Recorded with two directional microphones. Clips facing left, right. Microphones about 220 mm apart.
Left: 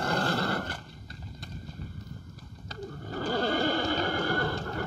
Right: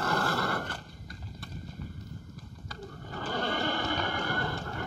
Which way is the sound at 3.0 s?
35° left (ahead or behind).